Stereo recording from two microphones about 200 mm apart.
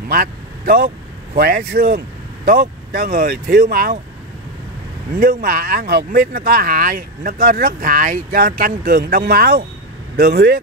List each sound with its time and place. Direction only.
0.1 s speech: 45° right (ahead or behind)
5.1 s speech: 45° right (ahead or behind)